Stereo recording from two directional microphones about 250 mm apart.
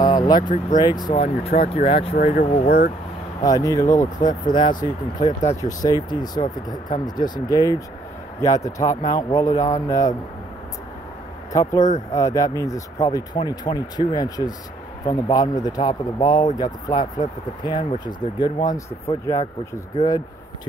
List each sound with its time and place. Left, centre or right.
0.0 s vehicle: centre
0.4 s speech: left
0.7 s speech: centre
3.4 s speech: centre
11.5 s speech: centre